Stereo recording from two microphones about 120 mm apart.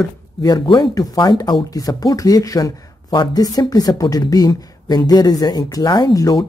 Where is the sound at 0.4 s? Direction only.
35° left (ahead or behind).